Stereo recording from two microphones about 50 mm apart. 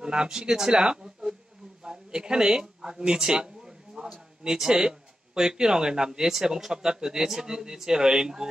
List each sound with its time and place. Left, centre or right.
0.0 s speech: centre